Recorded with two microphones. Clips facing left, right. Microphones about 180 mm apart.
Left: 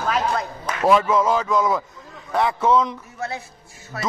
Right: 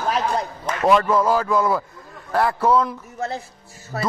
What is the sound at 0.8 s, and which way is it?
A man's voice, centre (ahead or behind).